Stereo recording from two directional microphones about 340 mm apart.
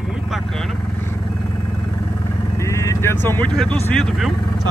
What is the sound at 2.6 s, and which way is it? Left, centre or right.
Speech, centre.